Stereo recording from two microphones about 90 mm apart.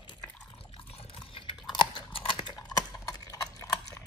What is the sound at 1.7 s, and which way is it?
Chewing, 75° left (ahead or behind).